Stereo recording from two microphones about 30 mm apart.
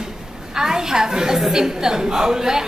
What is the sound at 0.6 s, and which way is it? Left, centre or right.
A woman's voice, centre.